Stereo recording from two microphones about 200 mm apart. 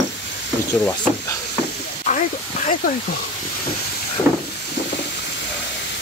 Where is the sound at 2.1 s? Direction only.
40° left (ahead or behind).